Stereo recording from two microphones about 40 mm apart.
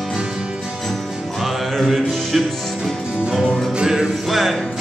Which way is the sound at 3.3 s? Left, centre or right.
Centre.